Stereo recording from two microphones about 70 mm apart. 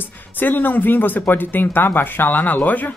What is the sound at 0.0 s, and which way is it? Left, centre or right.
A woman's voice, left.